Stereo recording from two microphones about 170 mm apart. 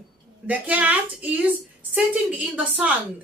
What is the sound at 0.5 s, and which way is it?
A woman's voice, 10° right (ahead or behind).